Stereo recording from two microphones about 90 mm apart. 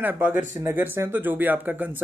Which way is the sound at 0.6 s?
30° right (ahead or behind).